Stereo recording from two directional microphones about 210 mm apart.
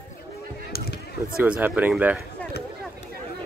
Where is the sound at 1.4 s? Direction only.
5° right (ahead or behind).